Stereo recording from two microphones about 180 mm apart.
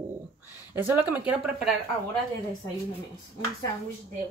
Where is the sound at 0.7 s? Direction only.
10° right (ahead or behind).